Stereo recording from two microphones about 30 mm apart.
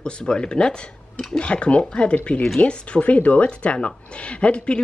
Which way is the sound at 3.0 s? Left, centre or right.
Left.